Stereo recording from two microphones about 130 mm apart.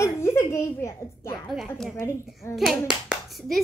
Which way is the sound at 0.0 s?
20° left (ahead or behind).